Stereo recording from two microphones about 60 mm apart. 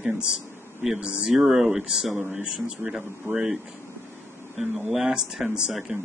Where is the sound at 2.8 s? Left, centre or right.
Right.